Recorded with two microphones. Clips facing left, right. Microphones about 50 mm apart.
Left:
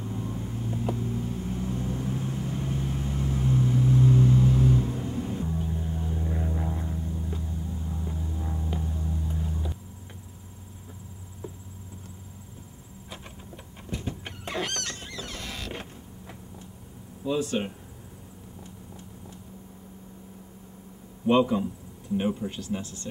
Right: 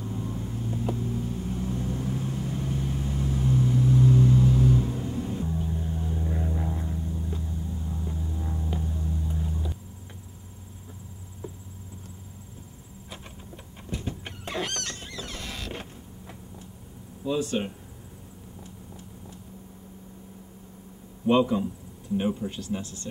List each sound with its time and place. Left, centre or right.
0.0 s vehicle: centre
13.8 s fowl: centre
17.2 s speech: centre
21.3 s a man's voice: centre